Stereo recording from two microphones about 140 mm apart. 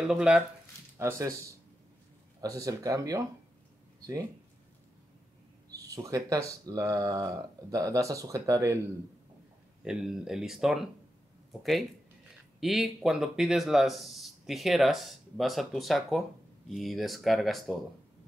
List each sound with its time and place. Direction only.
0.0 s speech: 5° right (ahead or behind)
0.9 s speech: 20° right (ahead or behind)
2.4 s speech: 25° right (ahead or behind)
6.0 s speech: 25° right (ahead or behind)
9.8 s speech: 5° right (ahead or behind)
12.5 s speech: centre (ahead or behind)